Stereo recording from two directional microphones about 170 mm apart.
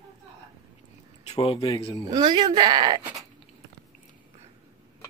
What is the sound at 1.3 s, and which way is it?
Speech, 35° left (ahead or behind).